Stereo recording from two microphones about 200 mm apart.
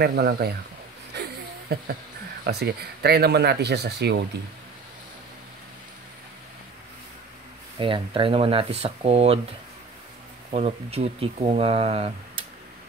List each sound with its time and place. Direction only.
0.0 s speech: 50° right (ahead or behind)
1.1 s a sound: 50° right (ahead or behind)
2.4 s speech: 50° right (ahead or behind)
7.8 s speech: 25° right (ahead or behind)